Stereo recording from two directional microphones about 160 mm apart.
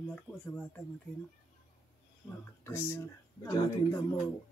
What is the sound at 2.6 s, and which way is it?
Speech, 15° left (ahead or behind).